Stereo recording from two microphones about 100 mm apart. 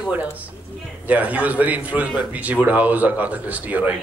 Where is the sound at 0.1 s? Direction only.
15° right (ahead or behind).